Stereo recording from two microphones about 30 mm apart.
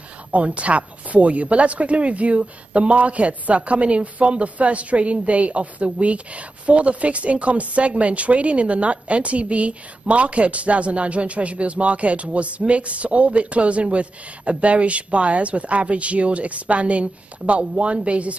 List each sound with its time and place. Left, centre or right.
0.3 s a woman's voice: right